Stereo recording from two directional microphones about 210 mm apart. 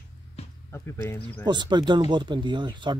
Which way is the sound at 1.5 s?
20° right (ahead or behind).